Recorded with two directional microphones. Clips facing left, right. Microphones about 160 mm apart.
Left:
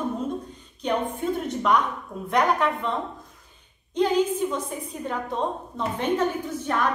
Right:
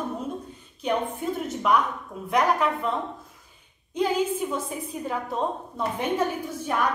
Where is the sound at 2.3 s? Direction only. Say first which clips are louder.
Even; 5° right (ahead or behind).